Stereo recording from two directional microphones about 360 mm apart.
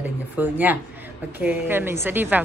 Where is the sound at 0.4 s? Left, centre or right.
Centre.